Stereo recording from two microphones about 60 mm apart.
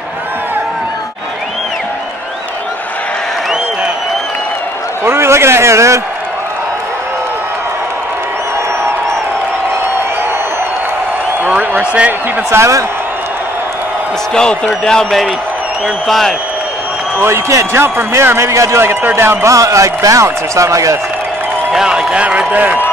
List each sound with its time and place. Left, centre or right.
5.0 s a sound: right
11.4 s a sound: centre
12.4 s a man's voice: right
14.3 s a man's voice: centre
17.7 s a man's voice: right
19.4 s speech: right
21.7 s a man's voice: centre